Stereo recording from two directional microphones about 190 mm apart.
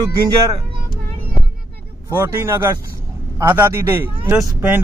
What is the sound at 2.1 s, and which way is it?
Speech, 15° right (ahead or behind).